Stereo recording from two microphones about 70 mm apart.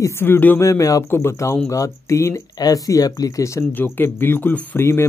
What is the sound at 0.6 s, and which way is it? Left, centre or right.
Speech, left.